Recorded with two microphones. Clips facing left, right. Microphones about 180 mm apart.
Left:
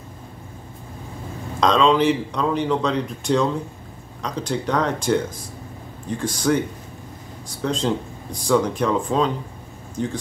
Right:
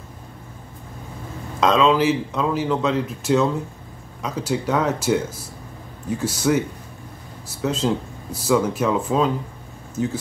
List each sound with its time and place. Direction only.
1.6 s speech: 5° right (ahead or behind)